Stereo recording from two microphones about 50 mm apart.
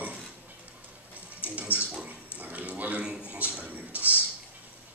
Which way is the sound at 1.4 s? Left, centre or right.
Right.